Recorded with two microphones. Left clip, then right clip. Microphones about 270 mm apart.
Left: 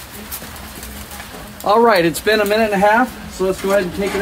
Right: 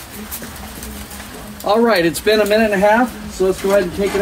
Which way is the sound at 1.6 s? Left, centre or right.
Centre.